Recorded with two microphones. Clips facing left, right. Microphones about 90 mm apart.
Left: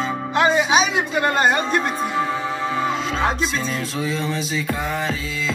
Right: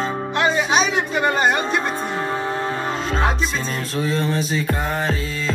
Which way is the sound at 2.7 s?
45° right (ahead or behind).